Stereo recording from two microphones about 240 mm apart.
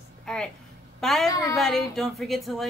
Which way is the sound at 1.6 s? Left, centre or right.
Centre.